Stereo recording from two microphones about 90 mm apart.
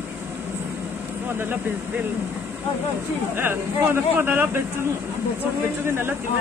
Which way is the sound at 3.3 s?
25° right (ahead or behind).